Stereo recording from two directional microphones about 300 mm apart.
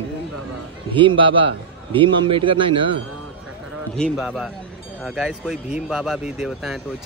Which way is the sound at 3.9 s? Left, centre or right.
Centre.